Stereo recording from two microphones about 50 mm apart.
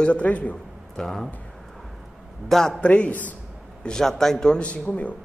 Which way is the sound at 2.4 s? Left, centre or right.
Centre.